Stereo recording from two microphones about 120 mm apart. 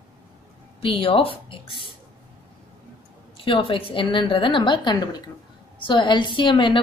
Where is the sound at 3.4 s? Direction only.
45° left (ahead or behind).